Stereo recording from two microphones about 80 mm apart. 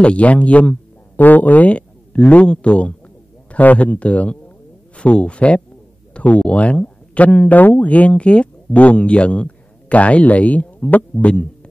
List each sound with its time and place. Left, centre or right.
0.0 s a man's voice: centre